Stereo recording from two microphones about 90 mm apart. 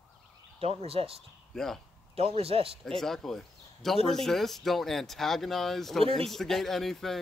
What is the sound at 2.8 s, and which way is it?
Speech, 5° left (ahead or behind).